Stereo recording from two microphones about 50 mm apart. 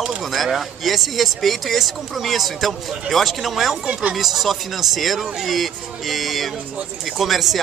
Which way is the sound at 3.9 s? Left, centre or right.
Right.